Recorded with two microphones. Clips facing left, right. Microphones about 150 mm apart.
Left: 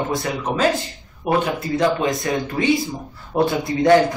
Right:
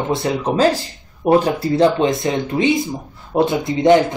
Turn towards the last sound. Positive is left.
turn(degrees=-20)  # may be behind; listen again after turning